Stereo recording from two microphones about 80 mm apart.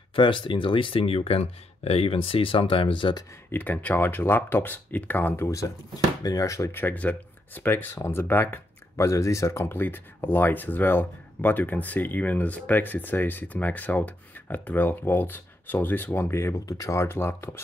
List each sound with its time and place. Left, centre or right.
0.1 s speech: left
2.1 s speech: left
3.5 s speech: left
6.2 s speech: left
6.7 s speech: left
8.9 s speech: left